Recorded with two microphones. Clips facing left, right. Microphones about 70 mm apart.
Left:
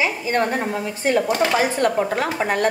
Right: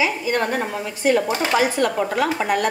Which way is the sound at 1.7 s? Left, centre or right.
Left.